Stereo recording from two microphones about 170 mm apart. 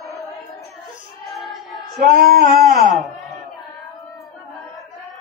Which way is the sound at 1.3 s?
Centre (ahead or behind).